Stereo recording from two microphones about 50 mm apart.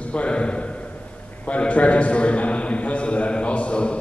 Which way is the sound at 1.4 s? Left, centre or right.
Left.